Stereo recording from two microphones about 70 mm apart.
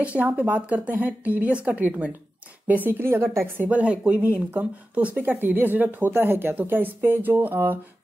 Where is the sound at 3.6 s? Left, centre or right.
Right.